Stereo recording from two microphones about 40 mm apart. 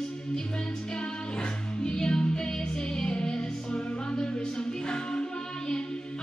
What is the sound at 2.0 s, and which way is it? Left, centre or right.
Music, centre.